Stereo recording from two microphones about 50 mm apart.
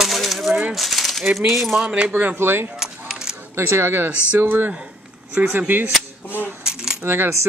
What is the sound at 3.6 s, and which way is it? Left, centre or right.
Speech, right.